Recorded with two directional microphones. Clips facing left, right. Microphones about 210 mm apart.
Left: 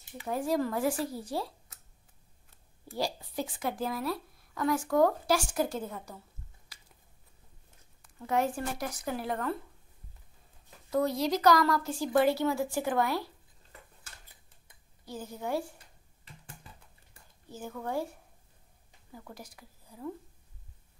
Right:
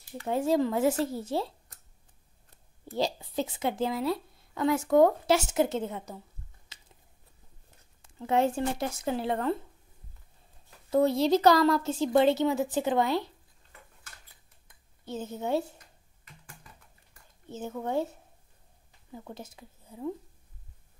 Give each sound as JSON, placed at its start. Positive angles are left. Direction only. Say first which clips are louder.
{"t": 0.3, "sound": "speech", "louder": "right 4 dB", "side_deg": -25}
{"t": 2.9, "sound": "speech", "louder": "right 4 dB", "side_deg": -20}
{"t": 6.7, "sound": "chewing", "louder": "right 2 dB", "side_deg": -25}
{"t": 8.0, "sound": "speech", "louder": "right 4 dB", "side_deg": -25}
{"t": 10.9, "sound": "speech", "louder": "right 5 dB", "side_deg": -25}
{"t": 15.0, "sound": "speech", "louder": "right 4 dB", "side_deg": -25}
{"t": 17.5, "sound": "speech", "louder": "right 4 dB", "side_deg": -20}
{"t": 19.1, "sound": "speech", "louder": "right 4 dB", "side_deg": -25}